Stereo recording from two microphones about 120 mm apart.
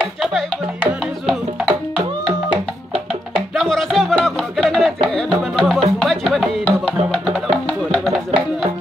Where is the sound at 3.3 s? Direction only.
Centre (ahead or behind).